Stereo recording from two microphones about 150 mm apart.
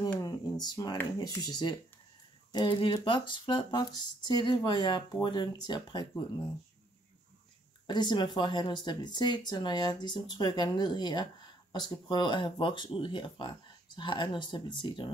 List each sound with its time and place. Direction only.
0.2 s speech: 25° left (ahead or behind)
7.8 s speech: 30° left (ahead or behind)